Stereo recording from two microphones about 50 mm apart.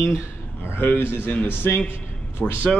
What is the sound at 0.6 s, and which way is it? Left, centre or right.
A man's voice, left.